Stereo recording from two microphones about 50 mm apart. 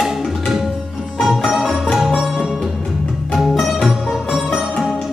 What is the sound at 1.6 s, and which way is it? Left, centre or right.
Music, centre.